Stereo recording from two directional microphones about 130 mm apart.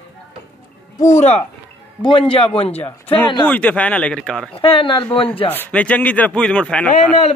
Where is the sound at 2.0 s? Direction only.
40° left (ahead or behind).